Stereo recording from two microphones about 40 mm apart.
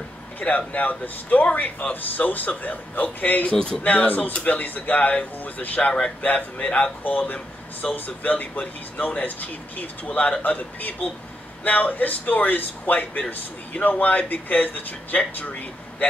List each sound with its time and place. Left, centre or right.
0.4 s a man's voice: left
3.5 s speech: left
3.8 s a man's voice: left